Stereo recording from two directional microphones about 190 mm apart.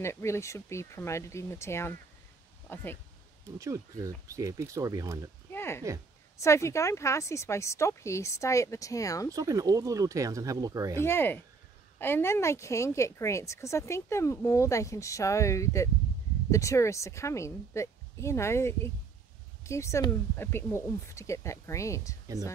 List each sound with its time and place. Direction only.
0.0 s a woman's voice: 15° left (ahead or behind)
3.5 s speech: 15° right (ahead or behind)
5.5 s a sound: 10° left (ahead or behind)
6.3 s a woman's voice: 15° left (ahead or behind)
9.3 s speech: 20° right (ahead or behind)
11.0 s a woman's voice: 10° left (ahead or behind)